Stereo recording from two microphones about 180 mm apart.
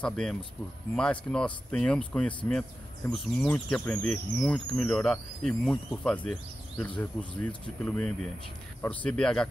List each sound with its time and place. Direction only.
0.0 s speech: 5° left (ahead or behind)